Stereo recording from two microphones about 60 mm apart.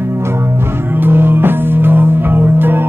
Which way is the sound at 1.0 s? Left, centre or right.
Right.